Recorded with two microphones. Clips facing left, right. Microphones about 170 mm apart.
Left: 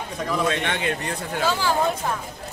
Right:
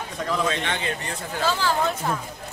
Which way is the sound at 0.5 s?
60° left (ahead or behind).